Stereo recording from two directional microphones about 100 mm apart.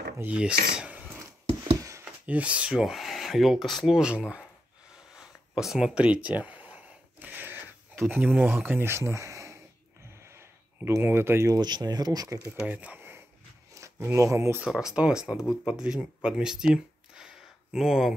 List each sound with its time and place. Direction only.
0.2 s filing: 10° right (ahead or behind)
1.8 s a sound: 30° right (ahead or behind)
2.2 s speech: 15° right (ahead or behind)
5.1 s a sound: 5° right (ahead or behind); by 9.6 s 30° right (ahead or behind)
11.0 s speech: 25° right (ahead or behind)
11.6 s speech: 45° right (ahead or behind)
12.6 s speech: 15° right (ahead or behind)
13.7 s speech: 30° right (ahead or behind)
14.6 s speech: 5° right (ahead or behind)